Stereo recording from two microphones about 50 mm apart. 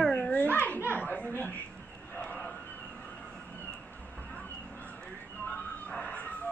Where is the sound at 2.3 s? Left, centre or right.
Left.